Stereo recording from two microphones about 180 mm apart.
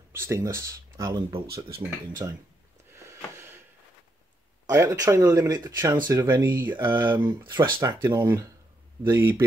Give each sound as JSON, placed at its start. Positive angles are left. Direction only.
{"t": 0.1, "sound": "speech", "side_deg": -15}
{"t": 2.2, "sound": "mantra", "side_deg": -20}
{"t": 4.6, "sound": "speech", "side_deg": -15}
{"t": 6.0, "sound": "mantra", "side_deg": -25}
{"t": 7.2, "sound": "speech", "side_deg": -20}